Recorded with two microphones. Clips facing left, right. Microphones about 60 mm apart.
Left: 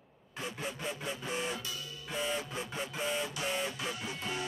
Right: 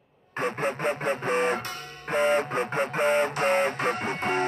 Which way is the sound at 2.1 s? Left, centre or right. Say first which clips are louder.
Right 13 dB; right.